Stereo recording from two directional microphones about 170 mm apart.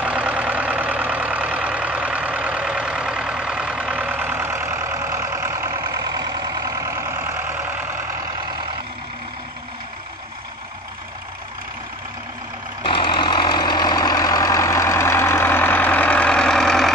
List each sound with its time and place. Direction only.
0.0 s vehicle: 5° right (ahead or behind)
12.8 s vehicle: 30° left (ahead or behind); by 16.9 s centre (ahead or behind)